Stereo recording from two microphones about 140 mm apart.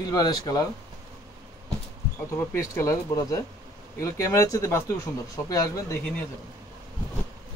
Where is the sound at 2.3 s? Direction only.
20° left (ahead or behind).